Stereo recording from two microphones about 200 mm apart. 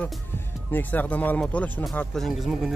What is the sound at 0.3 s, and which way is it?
Music, 10° left (ahead or behind).